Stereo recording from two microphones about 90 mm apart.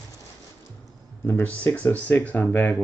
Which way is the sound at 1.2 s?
20° left (ahead or behind).